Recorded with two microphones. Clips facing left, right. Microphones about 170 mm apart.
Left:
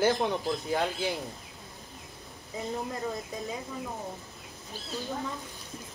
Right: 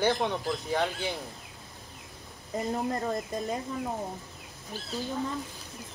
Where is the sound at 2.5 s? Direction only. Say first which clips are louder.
Right 4 dB; 65° right (ahead or behind).